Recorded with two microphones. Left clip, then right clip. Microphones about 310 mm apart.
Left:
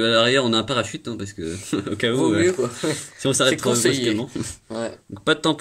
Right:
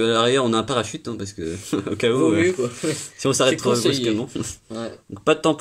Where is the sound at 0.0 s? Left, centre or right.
Centre.